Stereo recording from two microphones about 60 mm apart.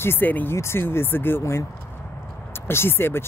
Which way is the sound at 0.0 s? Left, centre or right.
Left.